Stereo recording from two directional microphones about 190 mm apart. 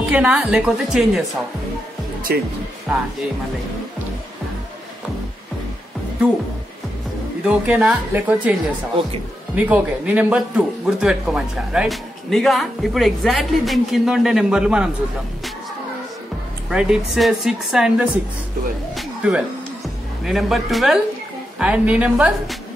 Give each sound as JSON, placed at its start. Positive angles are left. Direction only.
{"t": 0.1, "sound": "speech", "side_deg": -5}
{"t": 2.3, "sound": "speech", "side_deg": -55}
{"t": 7.4, "sound": "speech", "side_deg": -5}
{"t": 9.6, "sound": "speech", "side_deg": -10}
{"t": 16.6, "sound": "speech", "side_deg": -5}
{"t": 18.9, "sound": "music", "side_deg": -5}
{"t": 20.2, "sound": "speech", "side_deg": 0}